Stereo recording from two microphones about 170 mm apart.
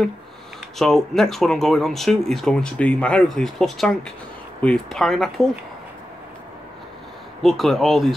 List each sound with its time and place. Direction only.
0.7 s speech: centre (ahead or behind)
7.4 s speech: centre (ahead or behind)